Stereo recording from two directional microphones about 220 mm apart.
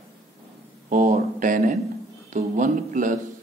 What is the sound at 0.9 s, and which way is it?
A man's voice, 35° right (ahead or behind).